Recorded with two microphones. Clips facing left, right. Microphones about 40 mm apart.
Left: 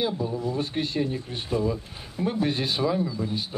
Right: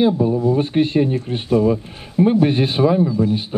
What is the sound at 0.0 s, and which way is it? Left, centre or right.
A man's voice, right.